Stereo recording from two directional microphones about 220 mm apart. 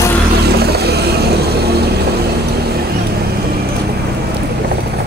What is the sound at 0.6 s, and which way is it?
Vehicle, 45° right (ahead or behind).